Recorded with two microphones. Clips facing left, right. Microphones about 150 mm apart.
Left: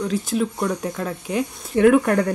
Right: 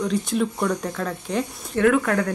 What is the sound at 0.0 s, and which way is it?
Speech, centre (ahead or behind).